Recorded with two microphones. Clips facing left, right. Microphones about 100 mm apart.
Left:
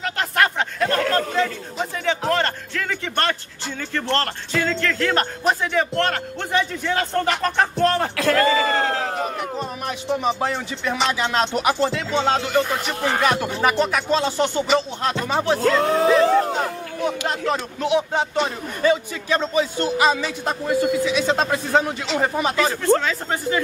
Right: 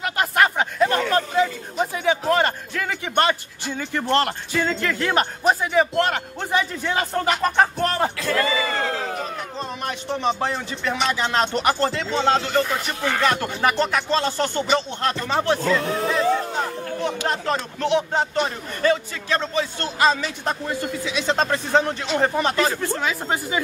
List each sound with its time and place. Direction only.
0.0 s a man's voice: 5° right (ahead or behind)
8.2 s speech: 50° left (ahead or behind)
9.6 s speech: 5° left (ahead or behind)
15.6 s speech: 70° left (ahead or behind)
17.3 s speech: 5° left (ahead or behind)
23.0 s a man's voice: 10° right (ahead or behind)